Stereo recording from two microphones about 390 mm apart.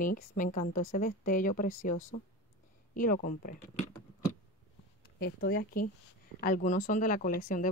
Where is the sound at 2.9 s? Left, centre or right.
Left.